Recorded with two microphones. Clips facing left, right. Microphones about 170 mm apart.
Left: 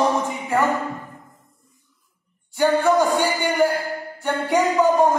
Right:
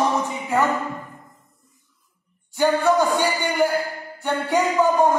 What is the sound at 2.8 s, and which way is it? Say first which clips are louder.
Speech: left 1 dB; 15° left (ahead or behind).